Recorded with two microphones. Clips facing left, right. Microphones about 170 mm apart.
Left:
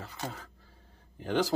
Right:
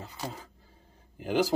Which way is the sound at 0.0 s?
15° right (ahead or behind).